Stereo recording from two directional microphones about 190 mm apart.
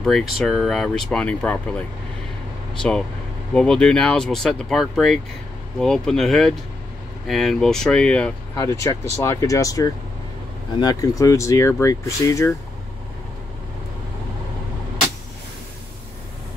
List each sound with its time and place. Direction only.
0.0 s speech: centre (ahead or behind)
3.5 s speech: 5° left (ahead or behind)
8.5 s speech: 20° left (ahead or behind)